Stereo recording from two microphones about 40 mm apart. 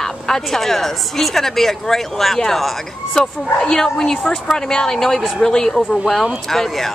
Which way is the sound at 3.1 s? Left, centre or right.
Centre.